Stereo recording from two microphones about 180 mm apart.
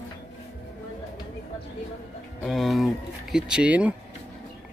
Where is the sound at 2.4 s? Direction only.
Centre (ahead or behind).